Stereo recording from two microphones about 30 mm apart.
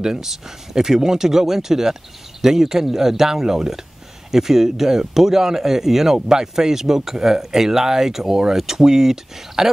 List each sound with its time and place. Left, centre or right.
0.0 s speech: right